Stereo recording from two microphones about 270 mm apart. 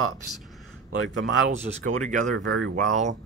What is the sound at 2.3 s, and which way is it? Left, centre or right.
Speech, right.